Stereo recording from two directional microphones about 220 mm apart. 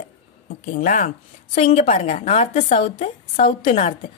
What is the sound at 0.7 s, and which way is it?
A woman's voice, 35° left (ahead or behind).